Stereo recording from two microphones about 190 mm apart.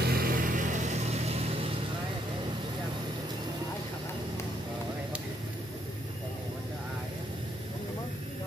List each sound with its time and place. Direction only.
0.0 s vehicle: 55° right (ahead or behind); by 1.7 s 35° right (ahead or behind)